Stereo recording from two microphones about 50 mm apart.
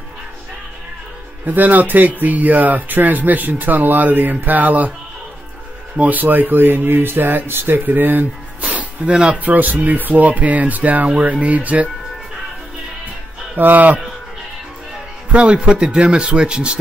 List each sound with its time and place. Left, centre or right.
1.4 s speech: right
5.9 s speech: right
9.4 s speech: right
13.6 s speech: right
15.3 s speech: right